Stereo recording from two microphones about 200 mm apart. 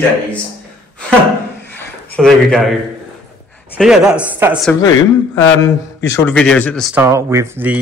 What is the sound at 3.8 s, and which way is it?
Speech, 5° right (ahead or behind).